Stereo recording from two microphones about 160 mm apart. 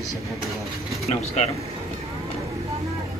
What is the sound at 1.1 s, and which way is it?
Speech, 40° left (ahead or behind).